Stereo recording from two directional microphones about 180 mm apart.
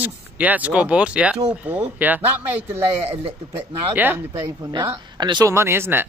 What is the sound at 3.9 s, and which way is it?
Speech, 10° right (ahead or behind).